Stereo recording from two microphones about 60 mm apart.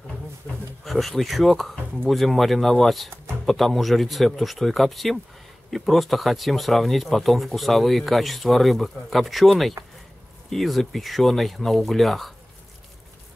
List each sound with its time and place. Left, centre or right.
0.5 s speech: left
0.8 s speech: centre